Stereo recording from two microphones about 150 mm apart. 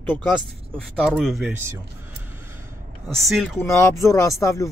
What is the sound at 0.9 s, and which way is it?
Speech, centre (ahead or behind).